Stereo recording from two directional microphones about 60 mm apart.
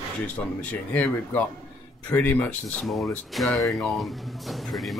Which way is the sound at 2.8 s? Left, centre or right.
Centre.